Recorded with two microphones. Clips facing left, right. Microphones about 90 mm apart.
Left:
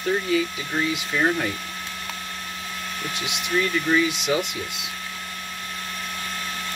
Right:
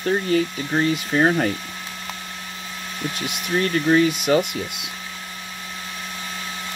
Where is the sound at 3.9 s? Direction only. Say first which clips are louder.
Right 7 dB; 45° right (ahead or behind).